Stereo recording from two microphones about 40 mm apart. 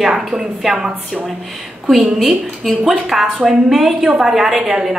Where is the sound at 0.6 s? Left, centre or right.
Centre.